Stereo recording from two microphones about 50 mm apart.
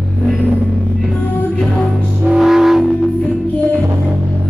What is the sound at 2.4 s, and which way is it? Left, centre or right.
Music, centre.